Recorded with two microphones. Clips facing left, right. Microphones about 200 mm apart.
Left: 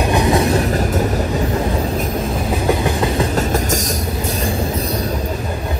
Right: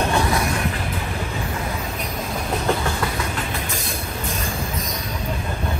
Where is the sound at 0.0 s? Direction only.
15° left (ahead or behind).